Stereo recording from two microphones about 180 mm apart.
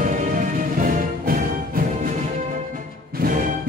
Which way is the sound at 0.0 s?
45° right (ahead or behind).